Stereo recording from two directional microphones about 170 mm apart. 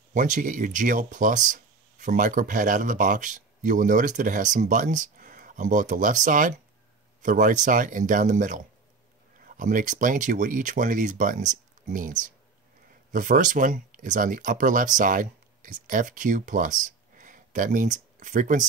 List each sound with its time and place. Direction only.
0.1 s speech: 45° right (ahead or behind)